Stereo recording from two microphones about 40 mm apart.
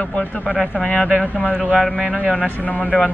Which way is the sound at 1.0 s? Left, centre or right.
Right.